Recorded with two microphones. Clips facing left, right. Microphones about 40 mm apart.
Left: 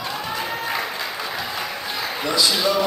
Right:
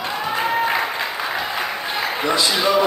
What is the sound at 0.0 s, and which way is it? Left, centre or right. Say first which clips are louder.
Applause: right 5 dB; centre.